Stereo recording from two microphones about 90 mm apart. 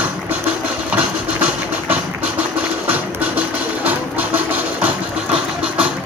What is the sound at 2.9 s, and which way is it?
Music, 15° right (ahead or behind).